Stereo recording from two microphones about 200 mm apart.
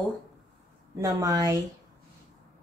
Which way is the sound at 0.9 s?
15° right (ahead or behind).